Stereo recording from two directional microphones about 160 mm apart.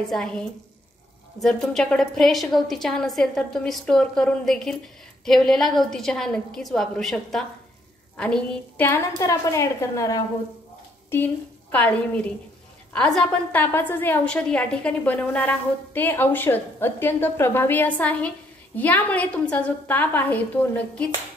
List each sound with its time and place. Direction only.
0.0 s a woman's voice: 5° left (ahead or behind); by 10.2 s 20° left (ahead or behind)
11.7 s a woman's voice: 10° left (ahead or behind)